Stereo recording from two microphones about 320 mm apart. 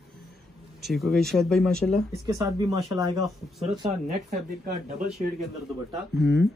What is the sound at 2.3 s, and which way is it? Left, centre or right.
Speech, centre.